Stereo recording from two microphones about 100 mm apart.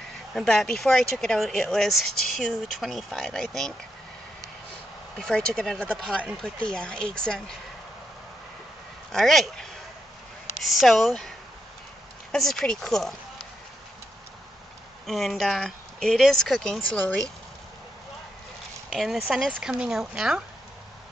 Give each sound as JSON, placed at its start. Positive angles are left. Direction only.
{"t": 0.3, "sound": "speech", "side_deg": 0}
{"t": 5.1, "sound": "speech", "side_deg": 5}
{"t": 9.1, "sound": "speech", "side_deg": 0}
{"t": 15.0, "sound": "speech", "side_deg": 0}
{"t": 18.9, "sound": "speech", "side_deg": 0}